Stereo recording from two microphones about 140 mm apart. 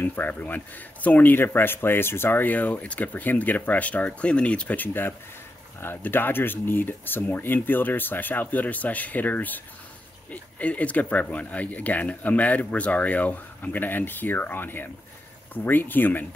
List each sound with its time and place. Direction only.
0.0 s speech: 15° left (ahead or behind)